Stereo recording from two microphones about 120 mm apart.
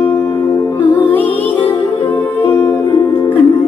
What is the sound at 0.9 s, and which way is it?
Music, 15° left (ahead or behind).